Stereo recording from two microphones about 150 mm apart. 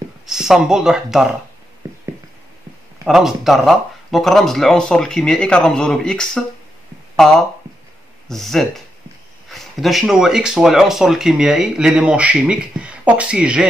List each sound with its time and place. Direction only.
0.3 s speech: 5° right (ahead or behind)
1.8 s a sound: 20° right (ahead or behind)
3.1 s speech: centre (ahead or behind)